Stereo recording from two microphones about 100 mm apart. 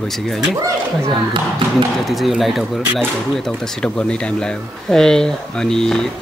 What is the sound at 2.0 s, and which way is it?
Speech, centre (ahead or behind).